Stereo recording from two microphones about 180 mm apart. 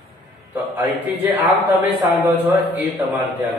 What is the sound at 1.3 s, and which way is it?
A man's voice, 10° right (ahead or behind).